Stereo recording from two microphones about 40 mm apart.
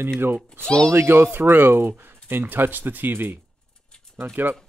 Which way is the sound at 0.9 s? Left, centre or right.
Right.